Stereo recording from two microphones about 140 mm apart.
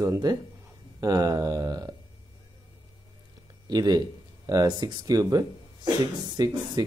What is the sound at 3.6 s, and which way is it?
Speech, 30° right (ahead or behind).